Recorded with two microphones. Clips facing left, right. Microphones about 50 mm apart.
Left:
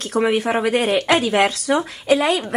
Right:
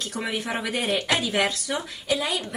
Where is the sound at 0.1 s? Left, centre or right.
Left.